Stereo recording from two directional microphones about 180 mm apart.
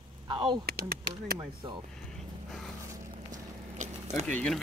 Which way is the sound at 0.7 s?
55° right (ahead or behind).